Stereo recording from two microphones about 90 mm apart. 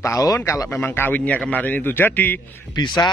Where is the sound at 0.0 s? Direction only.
35° left (ahead or behind).